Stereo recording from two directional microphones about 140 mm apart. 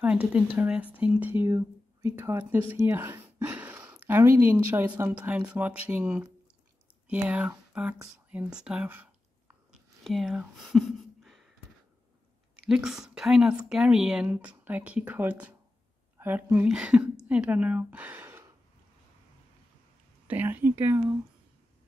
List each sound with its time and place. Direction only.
0.0 s speech: 10° right (ahead or behind)
7.2 s speech: 10° right (ahead or behind)
9.7 s a sound: centre (ahead or behind)
12.5 s speech: 5° right (ahead or behind)
20.2 s speech: 15° right (ahead or behind)